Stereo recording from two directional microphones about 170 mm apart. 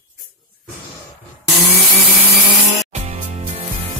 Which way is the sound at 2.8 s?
40° right (ahead or behind).